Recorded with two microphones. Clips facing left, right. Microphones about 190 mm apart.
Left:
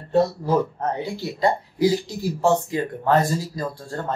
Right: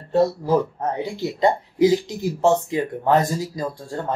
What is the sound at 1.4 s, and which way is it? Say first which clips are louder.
Speech: right 3 dB; 20° right (ahead or behind).